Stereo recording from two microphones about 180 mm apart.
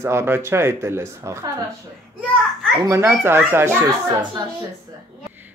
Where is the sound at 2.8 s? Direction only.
15° right (ahead or behind).